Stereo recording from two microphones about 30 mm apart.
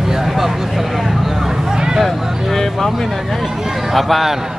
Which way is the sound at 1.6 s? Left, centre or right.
Right.